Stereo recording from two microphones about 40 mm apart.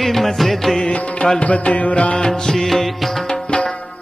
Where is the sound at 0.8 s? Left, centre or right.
Centre.